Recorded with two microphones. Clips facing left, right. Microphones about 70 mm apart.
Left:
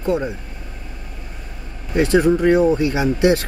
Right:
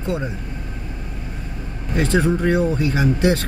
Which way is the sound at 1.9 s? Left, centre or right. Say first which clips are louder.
Left 4 dB; centre.